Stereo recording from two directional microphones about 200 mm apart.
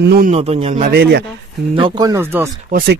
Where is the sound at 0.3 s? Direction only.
30° right (ahead or behind).